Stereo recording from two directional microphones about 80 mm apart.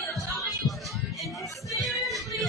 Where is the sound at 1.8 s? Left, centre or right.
Centre.